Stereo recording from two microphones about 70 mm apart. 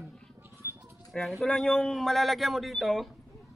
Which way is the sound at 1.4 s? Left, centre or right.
Centre.